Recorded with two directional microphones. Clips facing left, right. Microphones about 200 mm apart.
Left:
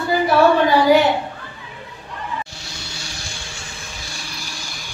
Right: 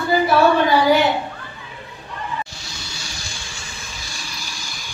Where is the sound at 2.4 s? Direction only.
60° left (ahead or behind).